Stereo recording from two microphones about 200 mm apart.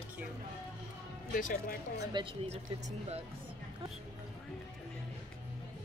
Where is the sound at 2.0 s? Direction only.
25° right (ahead or behind).